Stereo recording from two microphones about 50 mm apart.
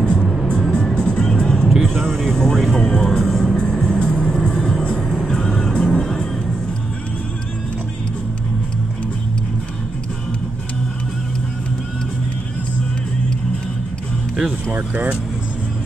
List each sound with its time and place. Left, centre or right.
0.0 s music: centre
1.3 s vehicle: centre
2.0 s speech: centre
3.4 s music: centre
14.7 s speech: right